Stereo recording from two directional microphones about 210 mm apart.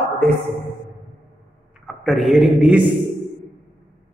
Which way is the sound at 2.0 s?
Centre (ahead or behind).